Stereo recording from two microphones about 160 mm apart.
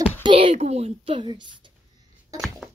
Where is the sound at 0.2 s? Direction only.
35° right (ahead or behind).